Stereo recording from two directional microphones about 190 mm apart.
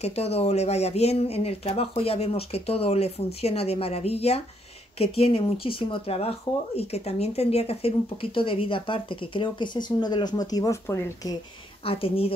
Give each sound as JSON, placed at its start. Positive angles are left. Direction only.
{"t": 0.0, "sound": "speech", "side_deg": 35}
{"t": 11.8, "sound": "speech", "side_deg": 30}